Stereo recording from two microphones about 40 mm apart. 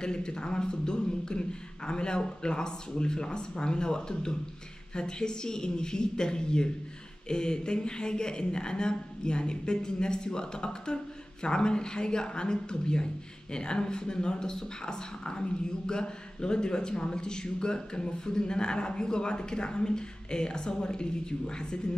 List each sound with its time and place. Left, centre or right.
0.0 s speech: left